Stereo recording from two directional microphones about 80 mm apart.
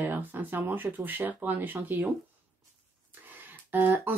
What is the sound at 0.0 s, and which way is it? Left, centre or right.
Speech, right.